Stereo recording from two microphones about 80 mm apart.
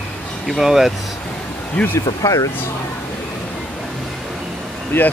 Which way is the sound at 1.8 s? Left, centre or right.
Centre.